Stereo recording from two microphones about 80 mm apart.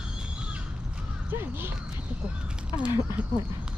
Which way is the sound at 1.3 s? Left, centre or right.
Right.